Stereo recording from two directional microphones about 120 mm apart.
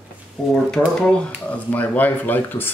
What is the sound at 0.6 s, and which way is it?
Speech, 5° left (ahead or behind).